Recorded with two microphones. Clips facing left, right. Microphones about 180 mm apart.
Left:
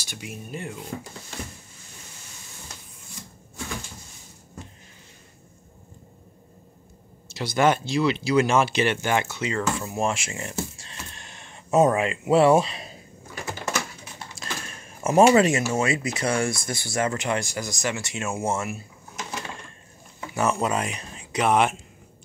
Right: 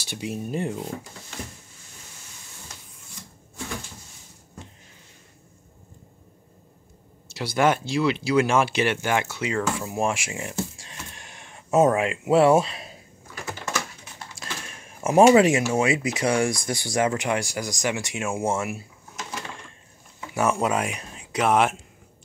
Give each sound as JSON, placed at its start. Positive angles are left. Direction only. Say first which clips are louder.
{"t": 0.1, "sound": "speech", "louder": "right 7 dB", "side_deg": -35}
{"t": 7.3, "sound": "speech", "louder": "even", "side_deg": -10}
{"t": 10.8, "sound": "a sound", "louder": "even", "side_deg": -10}
{"t": 14.3, "sound": "a sound", "louder": "left 1 dB", "side_deg": -10}
{"t": 15.3, "sound": "speech", "louder": "right 2 dB", "side_deg": -15}
{"t": 20.3, "sound": "speech", "louder": "right 1 dB", "side_deg": -10}